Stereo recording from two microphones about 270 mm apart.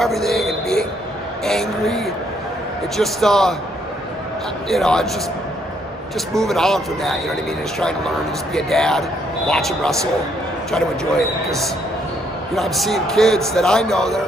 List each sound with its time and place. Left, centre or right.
0.0 s a sound: centre
1.4 s speech: centre
4.6 s speech: centre
6.4 s speech: centre
8.5 s speech: centre